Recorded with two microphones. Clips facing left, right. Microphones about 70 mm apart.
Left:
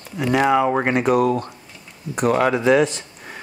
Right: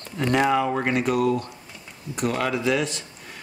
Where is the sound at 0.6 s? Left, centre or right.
Left.